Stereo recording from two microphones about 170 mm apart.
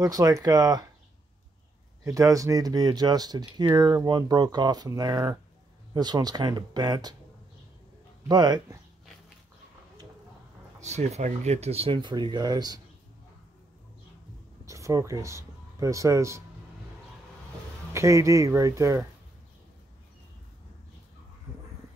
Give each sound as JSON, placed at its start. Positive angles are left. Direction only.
{"t": 0.0, "sound": "speech", "side_deg": -20}
{"t": 2.0, "sound": "speech", "side_deg": -20}
{"t": 8.3, "sound": "speech", "side_deg": -25}
{"t": 10.8, "sound": "speech", "side_deg": -40}
{"t": 14.7, "sound": "speech", "side_deg": -20}
{"t": 17.9, "sound": "speech", "side_deg": -15}